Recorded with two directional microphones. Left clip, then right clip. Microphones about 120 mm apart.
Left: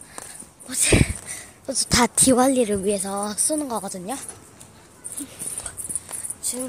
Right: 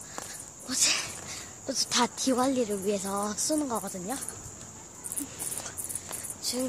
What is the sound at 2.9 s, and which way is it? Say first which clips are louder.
Speech: left 5 dB; 30° left (ahead or behind).